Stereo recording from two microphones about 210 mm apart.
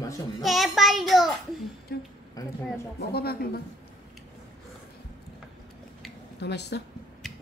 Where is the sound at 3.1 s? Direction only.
50° left (ahead or behind).